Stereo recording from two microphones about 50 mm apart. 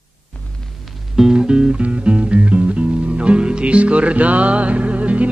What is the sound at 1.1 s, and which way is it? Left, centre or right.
Music, centre.